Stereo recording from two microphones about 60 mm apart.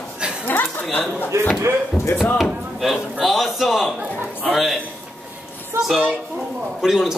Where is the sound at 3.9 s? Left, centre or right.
Right.